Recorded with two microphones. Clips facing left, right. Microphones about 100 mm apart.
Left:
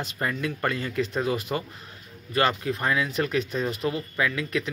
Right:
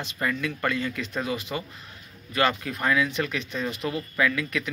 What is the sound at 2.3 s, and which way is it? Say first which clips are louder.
Speech: left 1 dB; 30° left (ahead or behind).